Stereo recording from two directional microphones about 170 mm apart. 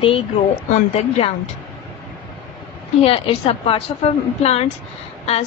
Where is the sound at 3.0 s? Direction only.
35° left (ahead or behind).